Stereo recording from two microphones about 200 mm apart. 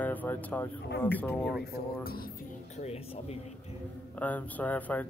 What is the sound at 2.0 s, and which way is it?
Speech, 50° left (ahead or behind).